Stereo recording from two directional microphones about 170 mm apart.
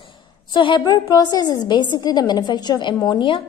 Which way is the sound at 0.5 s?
30° left (ahead or behind).